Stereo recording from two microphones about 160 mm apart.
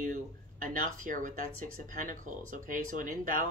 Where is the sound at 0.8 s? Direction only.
55° right (ahead or behind).